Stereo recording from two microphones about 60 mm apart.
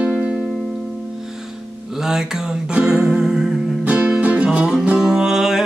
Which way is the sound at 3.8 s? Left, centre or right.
Right.